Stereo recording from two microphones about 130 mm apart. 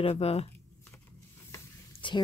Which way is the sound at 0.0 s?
50° left (ahead or behind).